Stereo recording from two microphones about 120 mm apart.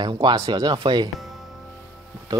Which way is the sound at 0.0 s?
40° right (ahead or behind).